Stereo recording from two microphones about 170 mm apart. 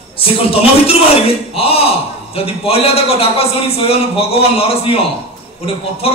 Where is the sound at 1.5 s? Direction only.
35° left (ahead or behind).